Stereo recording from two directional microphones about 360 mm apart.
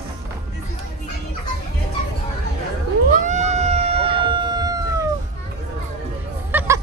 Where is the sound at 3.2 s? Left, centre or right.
Centre.